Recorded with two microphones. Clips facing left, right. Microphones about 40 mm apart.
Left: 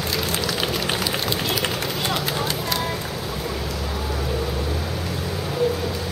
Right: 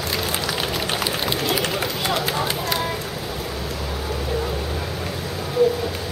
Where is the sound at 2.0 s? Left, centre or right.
Centre.